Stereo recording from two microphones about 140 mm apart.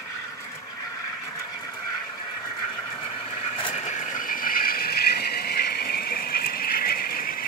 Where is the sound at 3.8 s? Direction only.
60° left (ahead or behind).